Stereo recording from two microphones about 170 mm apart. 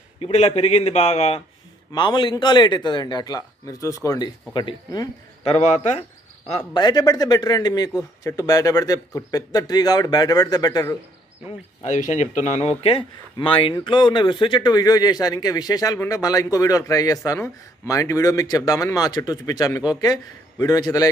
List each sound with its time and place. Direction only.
0.2 s a man's voice: 40° left (ahead or behind)
1.9 s speech: 25° left (ahead or behind)
5.4 s a man's voice: 40° left (ahead or behind)
6.5 s speech: 30° left (ahead or behind)
11.8 s speech: 45° left (ahead or behind); by 21.1 s 20° left (ahead or behind)